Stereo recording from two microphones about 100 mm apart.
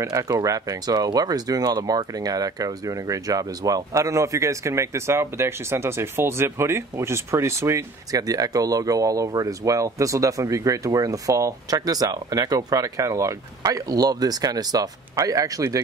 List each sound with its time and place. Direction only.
0.0 s speech: 35° right (ahead or behind)